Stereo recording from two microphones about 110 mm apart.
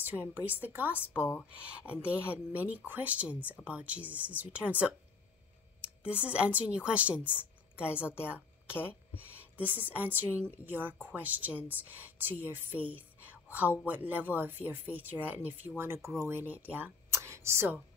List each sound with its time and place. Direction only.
0.0 s speech: 15° right (ahead or behind)
6.0 s speech: 10° right (ahead or behind)
9.2 s speech: 15° right (ahead or behind)